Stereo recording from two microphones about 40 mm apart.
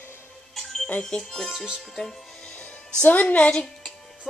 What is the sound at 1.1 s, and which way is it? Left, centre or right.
Speech, left.